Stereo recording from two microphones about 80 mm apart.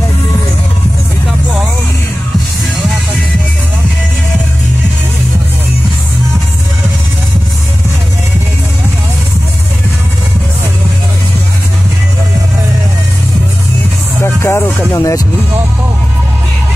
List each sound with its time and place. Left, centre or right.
14.2 s music: left
15.0 s speech: left